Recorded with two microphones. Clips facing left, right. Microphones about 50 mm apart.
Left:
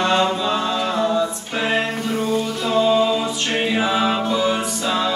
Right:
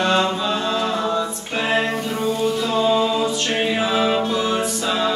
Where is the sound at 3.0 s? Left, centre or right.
Centre.